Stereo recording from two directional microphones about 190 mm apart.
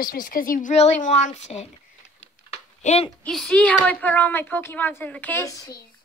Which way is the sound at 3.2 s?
5° left (ahead or behind).